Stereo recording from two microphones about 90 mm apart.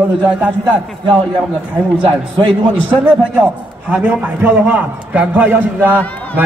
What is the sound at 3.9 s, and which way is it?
A man's voice, 15° right (ahead or behind).